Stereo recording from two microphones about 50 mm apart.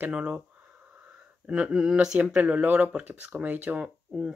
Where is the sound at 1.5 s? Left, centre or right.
Centre.